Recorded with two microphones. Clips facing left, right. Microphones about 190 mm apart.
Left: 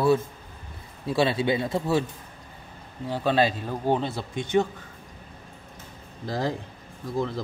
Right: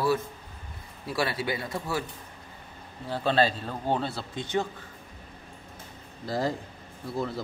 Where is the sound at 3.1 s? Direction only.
10° left (ahead or behind).